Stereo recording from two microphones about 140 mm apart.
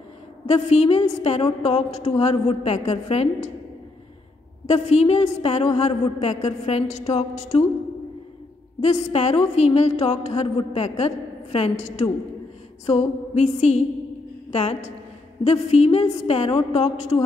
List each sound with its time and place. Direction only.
0.5 s a woman's voice: 50° left (ahead or behind)
4.6 s a woman's voice: 50° left (ahead or behind)
8.8 s a woman's voice: 50° left (ahead or behind)